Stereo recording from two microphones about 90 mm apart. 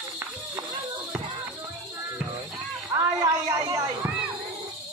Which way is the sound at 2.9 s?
40° right (ahead or behind).